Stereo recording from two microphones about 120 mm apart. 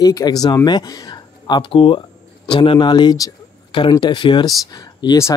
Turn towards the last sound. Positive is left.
turn(degrees=40)  # may be behind; listen again after turning